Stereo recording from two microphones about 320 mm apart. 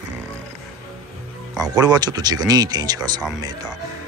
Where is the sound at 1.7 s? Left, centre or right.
Centre.